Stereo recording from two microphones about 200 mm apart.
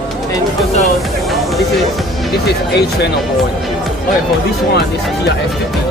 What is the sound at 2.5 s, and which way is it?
Speech, 55° left (ahead or behind).